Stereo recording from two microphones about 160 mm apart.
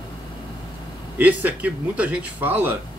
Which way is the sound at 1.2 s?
10° right (ahead or behind).